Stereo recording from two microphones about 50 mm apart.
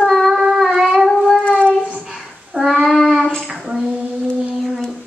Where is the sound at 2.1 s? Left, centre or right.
Centre.